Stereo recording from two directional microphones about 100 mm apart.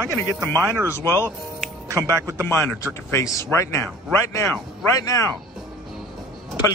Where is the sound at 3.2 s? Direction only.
30° left (ahead or behind).